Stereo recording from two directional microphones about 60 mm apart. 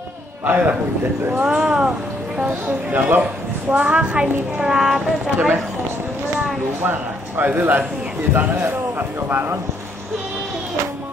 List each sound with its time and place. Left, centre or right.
0.5 s a man's voice: right
1.4 s a woman's voice: centre
2.4 s a man's voice: right
3.7 s a woman's voice: centre
6.8 s a man's voice: right